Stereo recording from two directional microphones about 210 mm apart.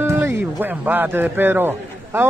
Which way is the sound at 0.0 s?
10° right (ahead or behind).